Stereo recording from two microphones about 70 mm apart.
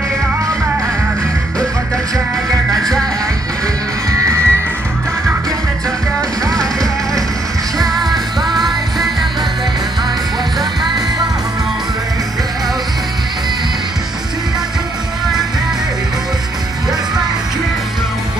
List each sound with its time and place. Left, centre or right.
2.7 s music: centre
4.1 s music: right
6.5 s music: centre